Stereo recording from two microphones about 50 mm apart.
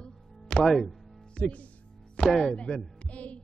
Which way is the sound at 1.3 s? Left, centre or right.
Left.